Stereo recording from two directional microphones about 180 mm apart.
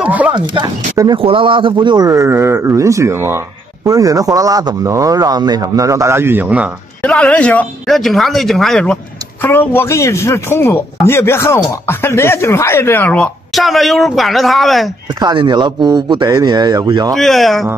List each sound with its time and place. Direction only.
0.0 s a sound: 10° right (ahead or behind)
0.3 s speech: 25° right (ahead or behind); by 6.7 s 5° right (ahead or behind)
7.0 s speech: 5° left (ahead or behind)
15.1 s speech: 25° right (ahead or behind)
17.1 s speech: centre (ahead or behind)